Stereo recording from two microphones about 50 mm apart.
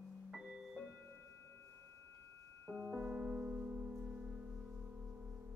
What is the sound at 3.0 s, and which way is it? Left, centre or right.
Music, centre.